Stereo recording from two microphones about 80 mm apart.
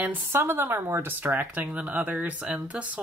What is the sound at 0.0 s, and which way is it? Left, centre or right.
Speech, right.